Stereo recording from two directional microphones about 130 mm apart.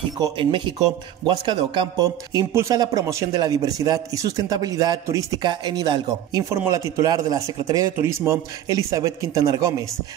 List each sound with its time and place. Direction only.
0.4 s a man's voice: 40° right (ahead or behind)
6.5 s speech: 20° right (ahead or behind)